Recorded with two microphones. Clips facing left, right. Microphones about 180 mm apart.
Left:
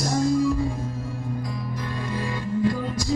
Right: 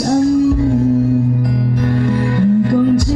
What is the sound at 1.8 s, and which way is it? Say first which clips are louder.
Music: right 14 dB; 70° right (ahead or behind).